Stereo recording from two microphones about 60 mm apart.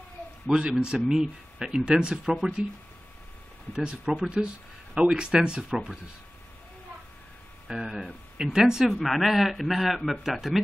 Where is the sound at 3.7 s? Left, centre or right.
Centre.